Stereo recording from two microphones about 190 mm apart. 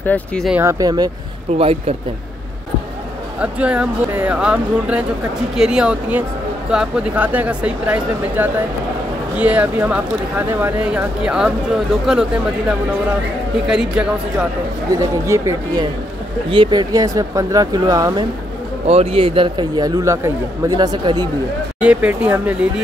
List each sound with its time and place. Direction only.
0.0 s speech: 5° left (ahead or behind)
0.5 s speech: 15° right (ahead or behind)
1.6 s speech: 30° right (ahead or behind)
3.3 s speech: 5° right (ahead or behind)
15.0 s speech: 15° right (ahead or behind)
18.9 s speech: 30° right (ahead or behind)
21.7 s speech: 5° right (ahead or behind)